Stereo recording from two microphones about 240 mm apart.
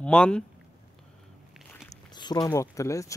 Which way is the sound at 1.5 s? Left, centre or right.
Centre.